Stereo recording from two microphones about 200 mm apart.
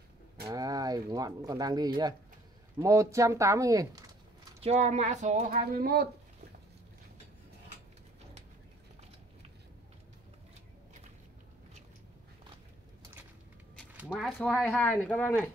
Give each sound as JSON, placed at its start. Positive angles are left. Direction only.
{"t": 0.5, "sound": "speech", "side_deg": -15}
{"t": 4.6, "sound": "speech", "side_deg": -35}
{"t": 13.9, "sound": "speech", "side_deg": -5}